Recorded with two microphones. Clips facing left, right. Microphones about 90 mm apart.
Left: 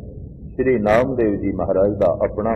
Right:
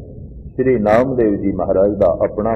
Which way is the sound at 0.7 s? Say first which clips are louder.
Right 3 dB; 10° right (ahead or behind).